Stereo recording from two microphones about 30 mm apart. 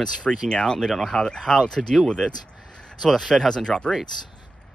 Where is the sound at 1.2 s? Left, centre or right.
Left.